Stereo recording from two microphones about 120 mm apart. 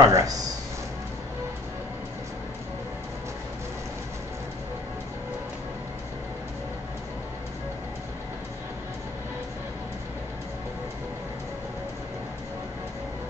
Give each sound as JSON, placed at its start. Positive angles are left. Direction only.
{"t": 0.0, "sound": "speech", "side_deg": -25}